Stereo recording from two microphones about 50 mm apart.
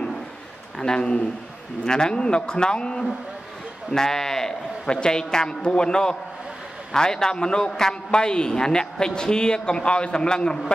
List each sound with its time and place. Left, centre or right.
0.7 s a man's voice: centre